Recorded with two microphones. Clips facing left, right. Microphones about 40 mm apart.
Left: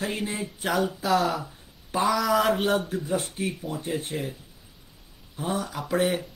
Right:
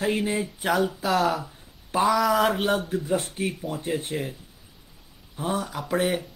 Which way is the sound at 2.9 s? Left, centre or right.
Right.